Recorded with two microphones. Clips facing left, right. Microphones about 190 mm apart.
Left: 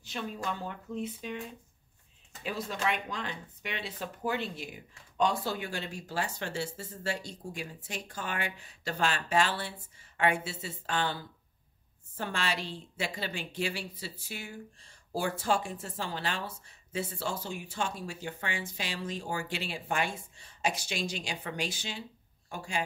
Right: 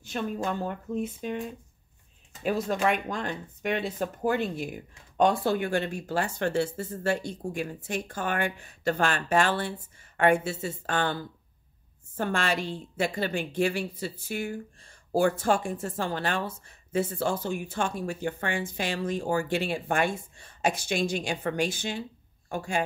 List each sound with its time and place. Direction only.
0.0 s a woman's voice: 50° right (ahead or behind)
2.4 s a woman's voice: 50° right (ahead or behind)